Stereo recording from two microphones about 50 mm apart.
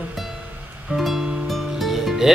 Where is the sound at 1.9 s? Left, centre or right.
Centre.